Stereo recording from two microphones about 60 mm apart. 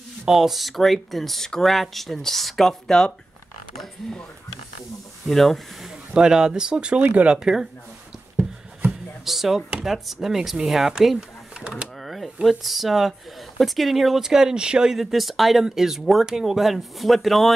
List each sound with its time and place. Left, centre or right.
0.2 s speech: centre
5.9 s speech: centre
7.0 s speech: right
7.2 s speech: centre
9.2 s speech: centre
12.0 s a sound: centre
12.4 s speech: centre